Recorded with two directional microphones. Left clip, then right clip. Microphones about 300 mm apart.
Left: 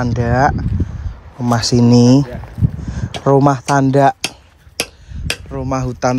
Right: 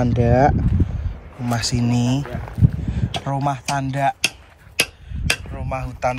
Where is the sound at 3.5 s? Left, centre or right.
Centre.